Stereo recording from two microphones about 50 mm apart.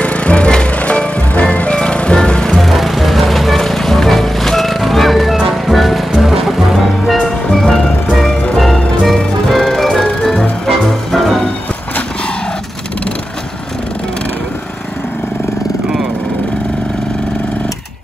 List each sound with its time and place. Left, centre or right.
0.0 s music: left
2.5 s music: centre
7.2 s music: centre
8.1 s music: centre